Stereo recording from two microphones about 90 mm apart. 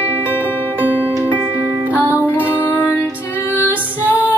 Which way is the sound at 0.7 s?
20° left (ahead or behind).